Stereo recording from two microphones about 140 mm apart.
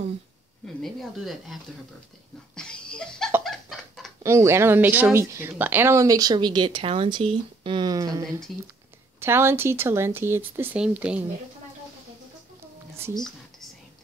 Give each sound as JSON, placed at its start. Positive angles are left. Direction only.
{"t": 0.8, "sound": "speech", "side_deg": 0}
{"t": 2.5, "sound": "a sound", "side_deg": 5}
{"t": 4.2, "sound": "speech", "side_deg": -20}